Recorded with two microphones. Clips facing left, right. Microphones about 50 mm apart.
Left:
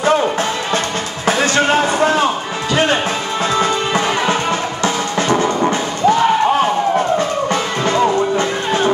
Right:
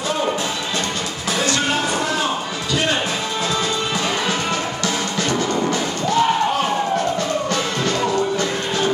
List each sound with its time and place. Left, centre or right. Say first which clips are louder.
1.2 s a sound: left 7 dB; left
3.5 s music: left 6 dB; left
7.4 s music: left 4 dB; left